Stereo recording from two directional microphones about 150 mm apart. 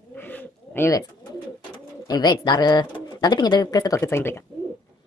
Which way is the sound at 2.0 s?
25° left (ahead or behind).